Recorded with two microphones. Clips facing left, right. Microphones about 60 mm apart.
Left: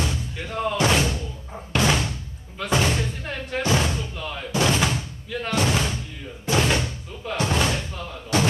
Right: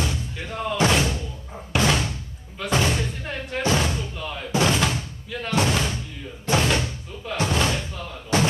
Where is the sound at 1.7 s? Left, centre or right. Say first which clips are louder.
Even; centre.